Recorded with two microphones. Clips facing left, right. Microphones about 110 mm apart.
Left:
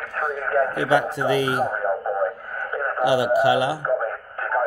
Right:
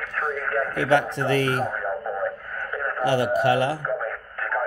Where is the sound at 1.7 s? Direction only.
30° left (ahead or behind).